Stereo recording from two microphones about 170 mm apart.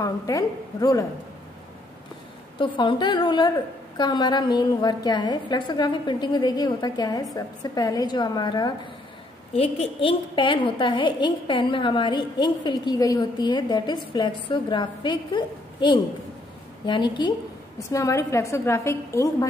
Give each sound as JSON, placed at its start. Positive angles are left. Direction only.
{"t": 0.0, "sound": "a woman's voice", "side_deg": 20}
{"t": 2.6, "sound": "a woman's voice", "side_deg": 30}